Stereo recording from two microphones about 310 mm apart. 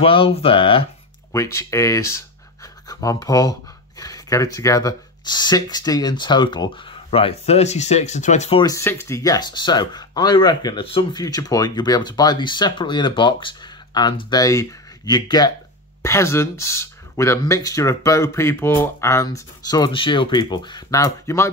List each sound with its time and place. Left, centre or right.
0.0 s speech: centre